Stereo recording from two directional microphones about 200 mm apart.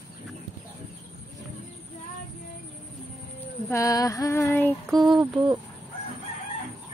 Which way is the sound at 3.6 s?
15° left (ahead or behind).